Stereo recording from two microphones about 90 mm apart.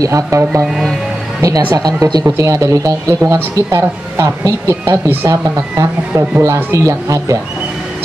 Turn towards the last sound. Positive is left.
turn(degrees=-35)  # may be behind; listen again after turning